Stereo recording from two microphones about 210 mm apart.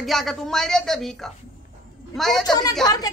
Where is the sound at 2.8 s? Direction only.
20° left (ahead or behind).